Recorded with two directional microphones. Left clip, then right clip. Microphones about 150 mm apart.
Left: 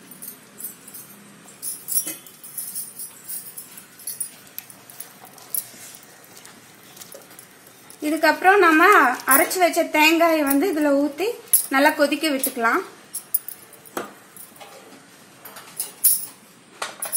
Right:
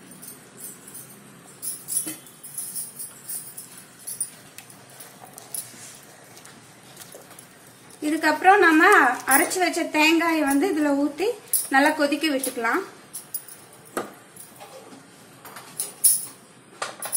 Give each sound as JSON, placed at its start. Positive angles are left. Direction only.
{"t": 8.0, "sound": "speech", "side_deg": 60}